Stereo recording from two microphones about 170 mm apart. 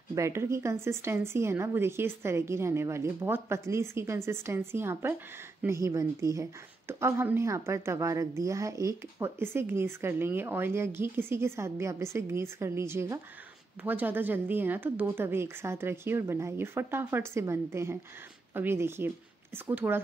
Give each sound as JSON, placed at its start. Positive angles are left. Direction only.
{"t": 0.1, "sound": "speech", "side_deg": -15}